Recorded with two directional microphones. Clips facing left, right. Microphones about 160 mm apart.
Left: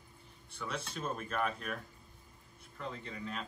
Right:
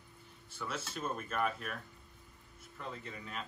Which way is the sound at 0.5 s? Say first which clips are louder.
Left 1 dB; 5° right (ahead or behind).